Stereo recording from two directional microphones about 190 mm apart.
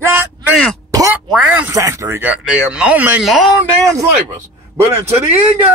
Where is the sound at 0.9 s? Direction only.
15° right (ahead or behind).